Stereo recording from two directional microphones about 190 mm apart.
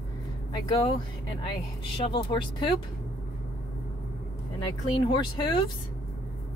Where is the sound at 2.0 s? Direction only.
25° left (ahead or behind).